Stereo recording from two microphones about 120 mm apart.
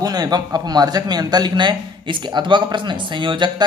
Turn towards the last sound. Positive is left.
turn(degrees=-40)  # may be behind; listen again after turning